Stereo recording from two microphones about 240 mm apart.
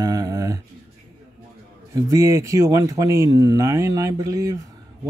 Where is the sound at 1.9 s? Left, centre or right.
Centre.